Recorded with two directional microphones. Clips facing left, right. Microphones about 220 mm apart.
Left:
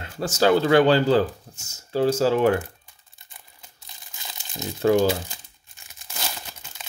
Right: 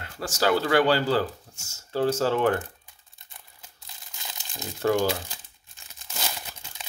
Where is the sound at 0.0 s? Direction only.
20° left (ahead or behind).